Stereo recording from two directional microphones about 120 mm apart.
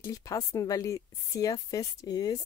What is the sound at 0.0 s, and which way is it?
Speech, 25° left (ahead or behind).